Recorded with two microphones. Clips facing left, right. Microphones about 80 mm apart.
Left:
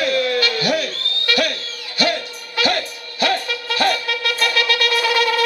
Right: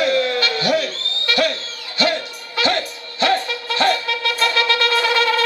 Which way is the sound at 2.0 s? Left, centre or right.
Right.